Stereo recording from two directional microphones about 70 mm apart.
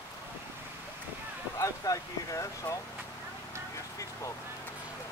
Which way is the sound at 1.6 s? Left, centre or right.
Left.